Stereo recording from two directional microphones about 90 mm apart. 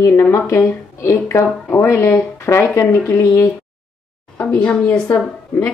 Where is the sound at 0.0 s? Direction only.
30° left (ahead or behind).